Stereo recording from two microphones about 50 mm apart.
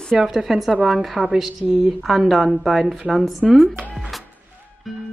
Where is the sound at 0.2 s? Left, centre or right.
Centre.